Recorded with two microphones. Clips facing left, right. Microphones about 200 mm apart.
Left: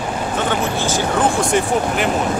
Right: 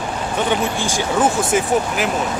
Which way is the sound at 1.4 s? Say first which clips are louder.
Even; 5° right (ahead or behind).